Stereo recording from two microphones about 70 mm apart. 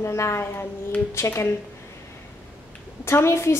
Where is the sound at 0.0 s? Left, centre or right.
Left.